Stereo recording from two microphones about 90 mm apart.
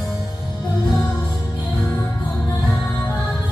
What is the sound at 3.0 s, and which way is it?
Music, 35° left (ahead or behind).